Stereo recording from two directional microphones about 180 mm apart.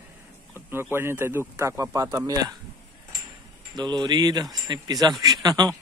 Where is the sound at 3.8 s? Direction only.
25° right (ahead or behind).